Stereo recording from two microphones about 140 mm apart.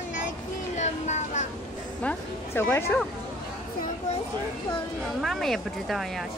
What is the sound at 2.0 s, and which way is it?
Music, 15° left (ahead or behind).